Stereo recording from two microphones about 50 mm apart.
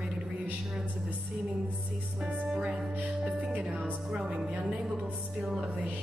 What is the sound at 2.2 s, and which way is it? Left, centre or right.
A woman's voice, right.